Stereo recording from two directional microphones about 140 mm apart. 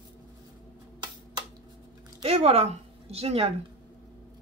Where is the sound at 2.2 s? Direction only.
45° right (ahead or behind).